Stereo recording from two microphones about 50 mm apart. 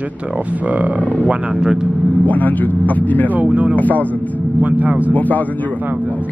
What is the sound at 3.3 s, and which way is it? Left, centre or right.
Speech, right.